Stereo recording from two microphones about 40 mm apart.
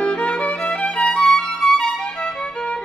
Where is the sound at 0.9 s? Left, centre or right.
Left.